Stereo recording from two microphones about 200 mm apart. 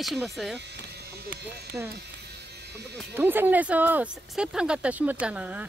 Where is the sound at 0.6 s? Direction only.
60° right (ahead or behind).